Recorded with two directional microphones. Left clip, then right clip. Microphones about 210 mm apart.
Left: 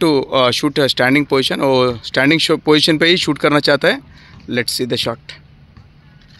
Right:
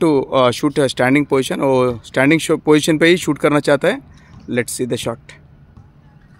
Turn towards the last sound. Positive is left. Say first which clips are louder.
# left 3 dB
turn(degrees=-5)  # may be behind; listen again after turning